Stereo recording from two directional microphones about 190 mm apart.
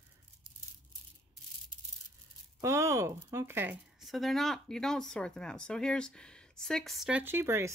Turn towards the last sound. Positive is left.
turn(degrees=-15)  # may be behind; listen again after turning